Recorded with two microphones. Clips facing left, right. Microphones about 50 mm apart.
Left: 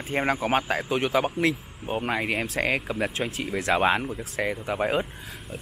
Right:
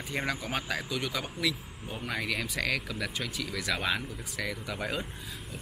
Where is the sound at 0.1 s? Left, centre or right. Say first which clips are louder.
Left 9 dB; left.